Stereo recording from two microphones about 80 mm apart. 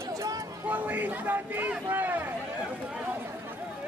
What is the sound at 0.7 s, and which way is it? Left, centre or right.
A man's voice, right.